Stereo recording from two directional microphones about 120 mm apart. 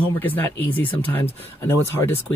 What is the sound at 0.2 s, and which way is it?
Speech, 15° left (ahead or behind).